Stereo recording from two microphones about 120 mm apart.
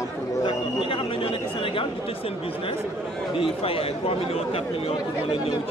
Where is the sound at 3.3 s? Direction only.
50° left (ahead or behind).